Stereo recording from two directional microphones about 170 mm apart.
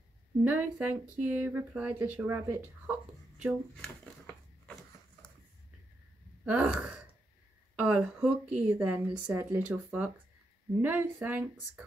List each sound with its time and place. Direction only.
0.4 s speech: 10° right (ahead or behind)
3.7 s a sound: 5° left (ahead or behind)
6.4 s speech: 5° right (ahead or behind)